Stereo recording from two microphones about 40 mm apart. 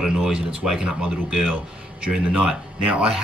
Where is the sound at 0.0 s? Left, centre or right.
Centre.